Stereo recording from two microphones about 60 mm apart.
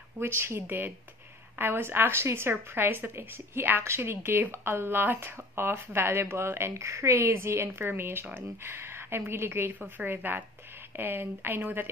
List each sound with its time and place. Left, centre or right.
0.2 s a woman's voice: right
9.8 s a woman's voice: right